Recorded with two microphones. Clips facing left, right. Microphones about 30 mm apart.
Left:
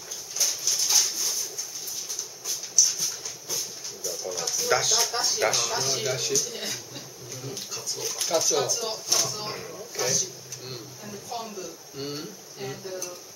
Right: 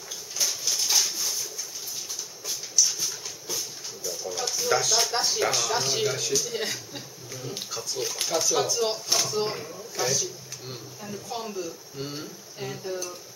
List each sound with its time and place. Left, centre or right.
0.4 s a sound: centre
2.8 s a sound: centre
4.6 s speech: centre
5.1 s speech: centre
6.0 s speech: centre
6.3 s speech: centre
8.0 s speech: centre
8.3 s speech: centre
8.6 s speech: centre
12.0 s speech: centre
12.5 s speech: centre